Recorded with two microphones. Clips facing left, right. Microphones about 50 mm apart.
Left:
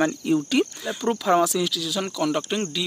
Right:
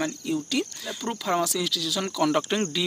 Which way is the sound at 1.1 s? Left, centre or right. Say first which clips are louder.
Left 5 dB; centre.